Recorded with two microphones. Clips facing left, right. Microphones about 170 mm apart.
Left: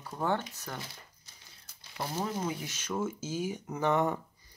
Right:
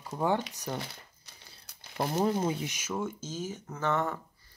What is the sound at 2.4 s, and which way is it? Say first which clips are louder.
Speech: right 4 dB; 25° right (ahead or behind).